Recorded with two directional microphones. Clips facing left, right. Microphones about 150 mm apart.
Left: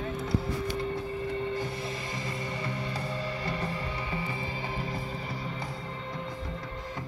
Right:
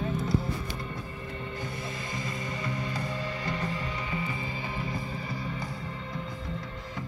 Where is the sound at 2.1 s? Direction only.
30° left (ahead or behind).